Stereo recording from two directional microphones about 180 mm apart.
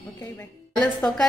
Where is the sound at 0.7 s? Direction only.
5° left (ahead or behind).